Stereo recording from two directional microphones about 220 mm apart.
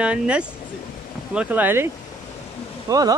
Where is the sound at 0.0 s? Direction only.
5° right (ahead or behind).